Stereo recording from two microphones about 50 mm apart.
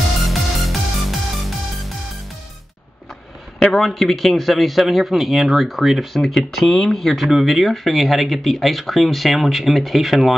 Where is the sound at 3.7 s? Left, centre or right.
Centre.